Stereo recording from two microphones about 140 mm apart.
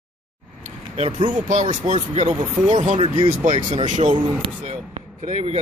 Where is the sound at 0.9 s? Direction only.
50° right (ahead or behind).